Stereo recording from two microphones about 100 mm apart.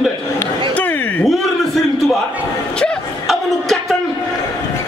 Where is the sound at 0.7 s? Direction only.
15° left (ahead or behind).